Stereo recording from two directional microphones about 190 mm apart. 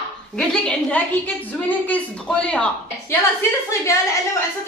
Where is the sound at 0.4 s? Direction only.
5° left (ahead or behind).